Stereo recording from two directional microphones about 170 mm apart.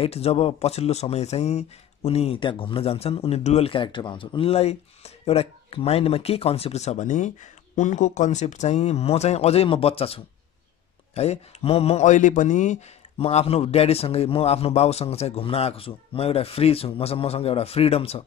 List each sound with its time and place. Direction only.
0.0 s speech: 35° left (ahead or behind)